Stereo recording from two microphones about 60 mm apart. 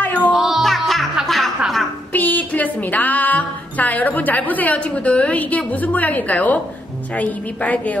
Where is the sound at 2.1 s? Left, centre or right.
Left.